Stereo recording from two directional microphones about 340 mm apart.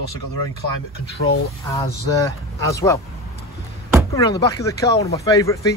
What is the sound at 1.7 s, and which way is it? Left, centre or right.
A man's voice, centre.